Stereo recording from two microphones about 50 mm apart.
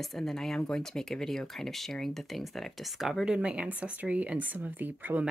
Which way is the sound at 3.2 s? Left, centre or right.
Centre.